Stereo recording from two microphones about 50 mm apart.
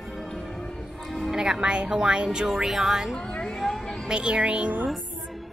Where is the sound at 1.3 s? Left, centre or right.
Centre.